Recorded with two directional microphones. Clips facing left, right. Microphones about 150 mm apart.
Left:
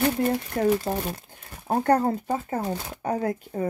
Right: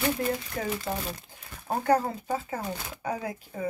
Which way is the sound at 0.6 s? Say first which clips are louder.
Left 8 dB; 40° left (ahead or behind).